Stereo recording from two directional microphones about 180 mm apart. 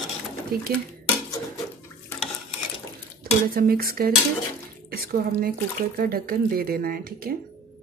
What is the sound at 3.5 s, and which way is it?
Speech, 55° right (ahead or behind).